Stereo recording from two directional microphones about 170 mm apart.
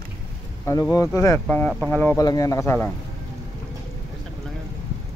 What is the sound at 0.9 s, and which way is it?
Speech, 20° left (ahead or behind).